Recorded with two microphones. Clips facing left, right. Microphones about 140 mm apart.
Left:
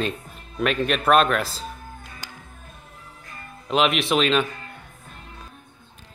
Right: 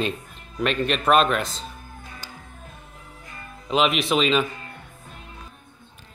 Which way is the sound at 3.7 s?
Centre (ahead or behind).